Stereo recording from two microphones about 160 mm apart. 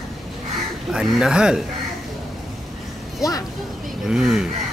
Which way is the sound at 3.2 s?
20° left (ahead or behind).